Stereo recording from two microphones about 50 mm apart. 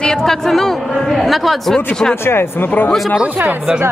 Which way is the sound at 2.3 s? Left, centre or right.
Left.